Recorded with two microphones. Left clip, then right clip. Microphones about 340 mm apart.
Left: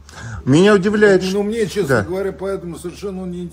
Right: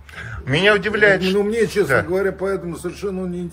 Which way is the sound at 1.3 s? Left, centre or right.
Centre.